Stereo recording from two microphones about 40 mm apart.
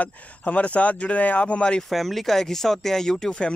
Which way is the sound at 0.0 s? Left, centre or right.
Left.